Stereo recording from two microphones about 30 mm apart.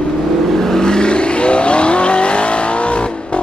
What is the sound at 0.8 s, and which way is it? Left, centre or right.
Vehicle, left.